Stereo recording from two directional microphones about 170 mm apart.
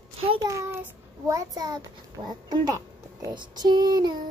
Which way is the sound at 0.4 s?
15° right (ahead or behind).